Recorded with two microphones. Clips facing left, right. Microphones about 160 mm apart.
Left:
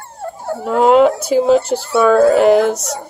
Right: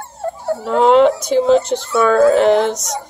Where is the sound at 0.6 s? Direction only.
5° left (ahead or behind).